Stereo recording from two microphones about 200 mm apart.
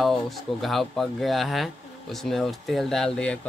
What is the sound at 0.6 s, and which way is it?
Speech, centre (ahead or behind).